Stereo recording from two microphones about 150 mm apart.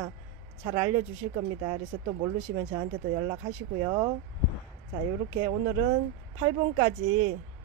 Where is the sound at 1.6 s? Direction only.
25° right (ahead or behind).